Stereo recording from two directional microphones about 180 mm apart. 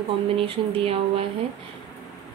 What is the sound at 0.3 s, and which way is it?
Speech, 30° right (ahead or behind).